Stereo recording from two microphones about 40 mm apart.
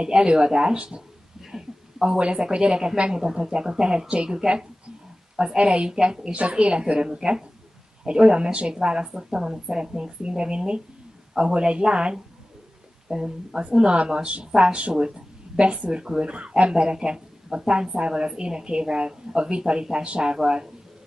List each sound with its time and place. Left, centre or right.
0.0 s a woman's voice: right
1.4 s a sound: centre
3.1 s a woman's voice: centre